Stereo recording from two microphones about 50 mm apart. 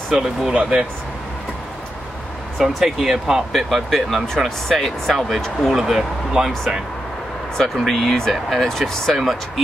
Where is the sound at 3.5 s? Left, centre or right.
Centre.